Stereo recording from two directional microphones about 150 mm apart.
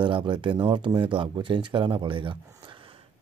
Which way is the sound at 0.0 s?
30° right (ahead or behind).